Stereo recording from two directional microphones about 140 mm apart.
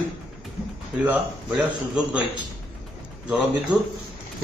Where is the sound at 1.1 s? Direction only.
10° right (ahead or behind).